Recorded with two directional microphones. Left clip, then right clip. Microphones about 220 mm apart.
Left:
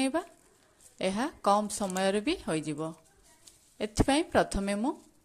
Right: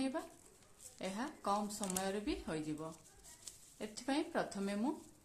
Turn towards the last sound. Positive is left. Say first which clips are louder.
# left 11 dB
turn(degrees=30)  # may be behind; listen again after turning